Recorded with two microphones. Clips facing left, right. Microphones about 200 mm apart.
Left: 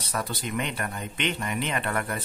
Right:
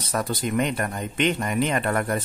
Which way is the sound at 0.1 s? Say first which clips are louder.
Right 6 dB; 45° right (ahead or behind).